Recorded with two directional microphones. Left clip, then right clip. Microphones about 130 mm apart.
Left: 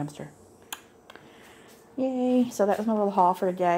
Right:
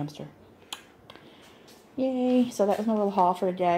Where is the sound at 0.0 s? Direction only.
5° left (ahead or behind).